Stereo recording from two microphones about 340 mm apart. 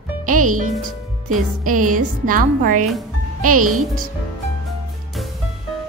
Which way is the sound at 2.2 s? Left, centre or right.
Right.